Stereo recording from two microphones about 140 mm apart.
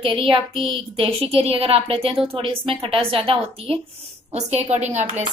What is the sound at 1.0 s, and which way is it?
A woman's voice, 45° right (ahead or behind).